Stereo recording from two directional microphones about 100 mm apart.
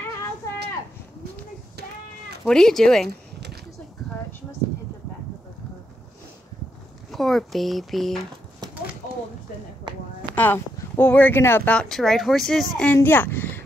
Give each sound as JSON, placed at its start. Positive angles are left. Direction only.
{"t": 2.4, "sound": "speech", "side_deg": 5}
{"t": 7.1, "sound": "speech", "side_deg": 0}
{"t": 10.3, "sound": "speech", "side_deg": 20}
{"t": 11.7, "sound": "speech", "side_deg": 5}
{"t": 12.9, "sound": "speech", "side_deg": 20}